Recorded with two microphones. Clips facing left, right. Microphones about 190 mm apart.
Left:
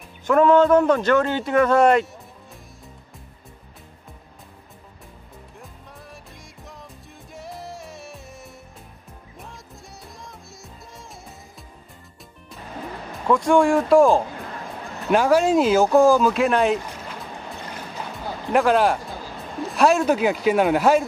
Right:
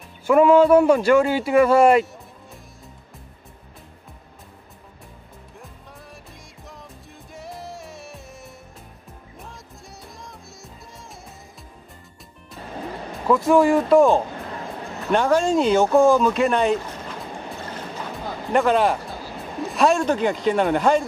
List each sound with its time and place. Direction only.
0.3 s a man's voice: 10° right (ahead or behind)
7.3 s music: centre (ahead or behind)
13.1 s speech: 5° right (ahead or behind)
18.5 s speech: centre (ahead or behind)